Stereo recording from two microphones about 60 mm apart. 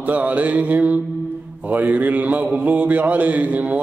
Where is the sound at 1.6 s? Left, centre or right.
Right.